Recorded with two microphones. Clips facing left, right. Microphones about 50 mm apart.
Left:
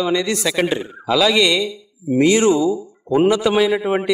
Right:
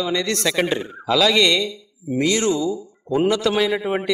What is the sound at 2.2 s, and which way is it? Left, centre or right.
A man's voice, centre.